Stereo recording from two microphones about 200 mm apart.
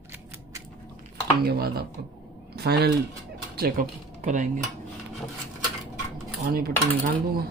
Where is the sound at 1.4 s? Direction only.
50° right (ahead or behind).